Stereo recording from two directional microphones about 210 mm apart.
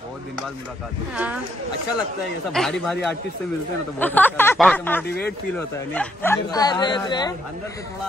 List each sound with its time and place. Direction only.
1.1 s speech: 5° right (ahead or behind)
2.5 s speech: centre (ahead or behind); by 7.3 s 20° left (ahead or behind)